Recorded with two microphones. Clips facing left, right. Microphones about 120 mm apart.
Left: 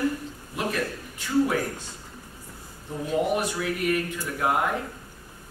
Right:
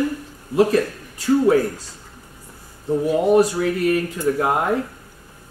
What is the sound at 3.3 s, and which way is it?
A man's voice, 35° right (ahead or behind).